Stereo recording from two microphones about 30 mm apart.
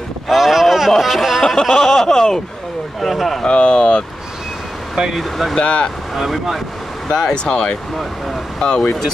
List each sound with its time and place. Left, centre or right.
0.3 s a sound: centre
1.6 s speech: centre
3.0 s speech: centre
3.4 s speech: left
5.6 s speech: left
6.1 s speech: centre
7.1 s speech: left
7.5 s speech: left